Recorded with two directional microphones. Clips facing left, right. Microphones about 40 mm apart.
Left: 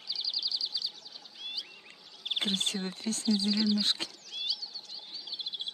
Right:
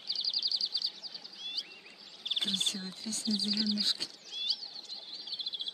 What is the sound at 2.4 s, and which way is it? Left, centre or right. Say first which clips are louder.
Speech: left 3 dB; left.